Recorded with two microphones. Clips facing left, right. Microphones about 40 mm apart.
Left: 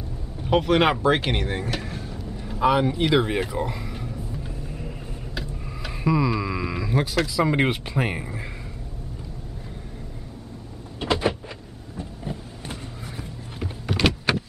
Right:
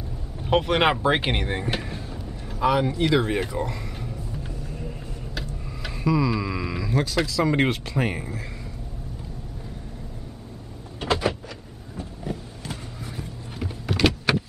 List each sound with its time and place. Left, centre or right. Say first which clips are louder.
0.4 s speech: left 1 dB; centre
1.9 s music: left 1 dB; centre
2.6 s speech: left 2 dB; centre
3.1 s a sound: left 1 dB; centre
7.2 s speech: even; centre
11.0 s door: left 1 dB; left
13.6 s power windows: right 1 dB; centre